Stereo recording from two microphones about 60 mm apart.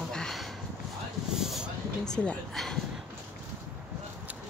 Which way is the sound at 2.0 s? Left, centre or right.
Centre.